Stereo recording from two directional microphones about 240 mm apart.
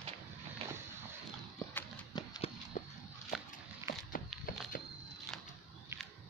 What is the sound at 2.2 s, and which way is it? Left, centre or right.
Horse, left.